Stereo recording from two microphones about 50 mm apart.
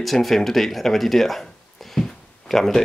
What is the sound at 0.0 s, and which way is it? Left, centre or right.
Speech, centre.